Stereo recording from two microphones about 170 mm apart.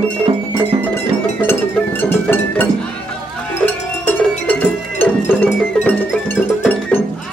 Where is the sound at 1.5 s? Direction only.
15° left (ahead or behind).